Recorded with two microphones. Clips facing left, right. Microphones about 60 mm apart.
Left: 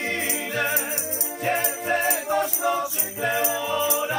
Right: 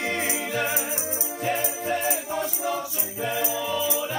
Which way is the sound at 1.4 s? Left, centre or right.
Left.